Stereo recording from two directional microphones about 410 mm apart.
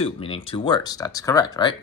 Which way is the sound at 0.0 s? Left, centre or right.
Centre.